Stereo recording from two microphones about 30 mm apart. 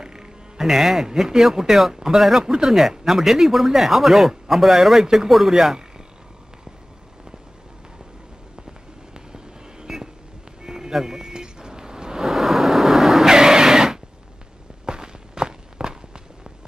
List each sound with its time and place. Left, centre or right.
0.0 s speech: right
2.4 s speech: right
9.1 s fireworks: right
10.6 s vehicle: centre
12.3 s vehicle: centre
13.3 s a sound: right
14.9 s walk: right